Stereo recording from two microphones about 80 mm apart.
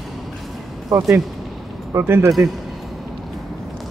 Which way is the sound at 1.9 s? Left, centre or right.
Right.